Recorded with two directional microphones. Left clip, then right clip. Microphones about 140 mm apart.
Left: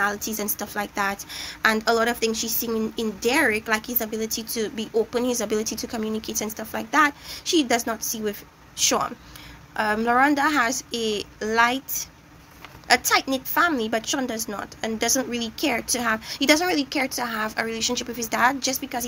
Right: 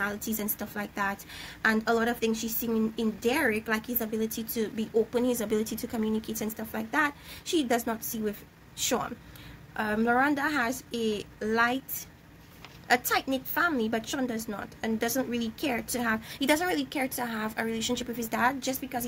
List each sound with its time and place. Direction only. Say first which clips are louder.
0.0 s a woman's voice: left 7 dB; 15° right (ahead or behind)
12.8 s a woman's voice: left 6 dB; 15° right (ahead or behind)